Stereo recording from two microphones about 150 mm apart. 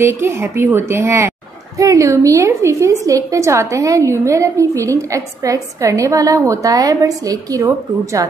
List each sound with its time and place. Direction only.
0.0 s a woman's voice: 15° right (ahead or behind)